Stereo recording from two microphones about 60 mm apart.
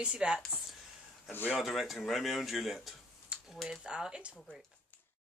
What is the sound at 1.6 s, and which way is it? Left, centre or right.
Speech, centre.